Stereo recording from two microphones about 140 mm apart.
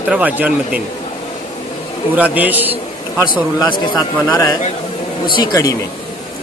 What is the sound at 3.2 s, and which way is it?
Speech, 35° left (ahead or behind).